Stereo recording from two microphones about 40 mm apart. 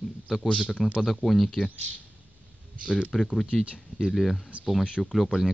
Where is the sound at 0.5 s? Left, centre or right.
Left.